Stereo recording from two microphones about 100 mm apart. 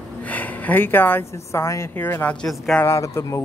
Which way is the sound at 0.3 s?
15° left (ahead or behind).